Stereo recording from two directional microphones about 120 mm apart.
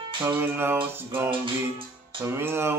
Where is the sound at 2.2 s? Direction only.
20° right (ahead or behind).